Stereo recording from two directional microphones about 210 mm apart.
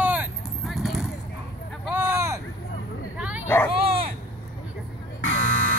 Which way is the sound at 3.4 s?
10° left (ahead or behind).